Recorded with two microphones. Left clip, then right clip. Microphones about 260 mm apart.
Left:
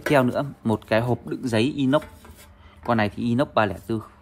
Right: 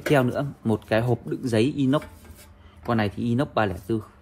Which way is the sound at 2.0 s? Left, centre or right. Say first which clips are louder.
Left 1 dB; centre.